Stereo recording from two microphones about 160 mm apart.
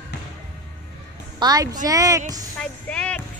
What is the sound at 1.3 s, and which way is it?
Speech, 25° right (ahead or behind).